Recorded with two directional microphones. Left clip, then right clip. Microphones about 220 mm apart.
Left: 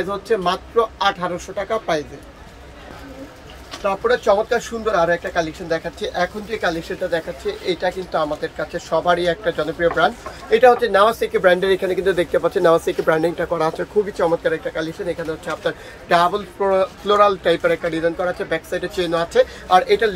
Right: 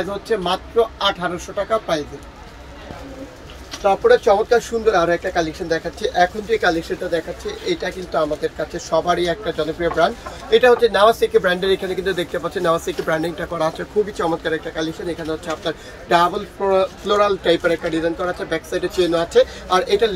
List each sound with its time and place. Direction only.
0.4 s speech: 5° left (ahead or behind)
3.8 s speech: centre (ahead or behind)